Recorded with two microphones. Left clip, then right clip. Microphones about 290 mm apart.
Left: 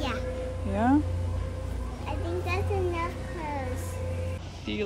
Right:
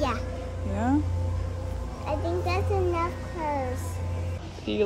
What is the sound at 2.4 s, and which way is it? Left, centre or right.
Speech, centre.